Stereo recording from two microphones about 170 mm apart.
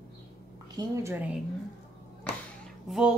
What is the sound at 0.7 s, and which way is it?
Speech, 20° right (ahead or behind).